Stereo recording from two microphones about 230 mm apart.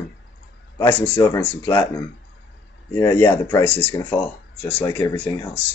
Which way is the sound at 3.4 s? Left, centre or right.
Centre.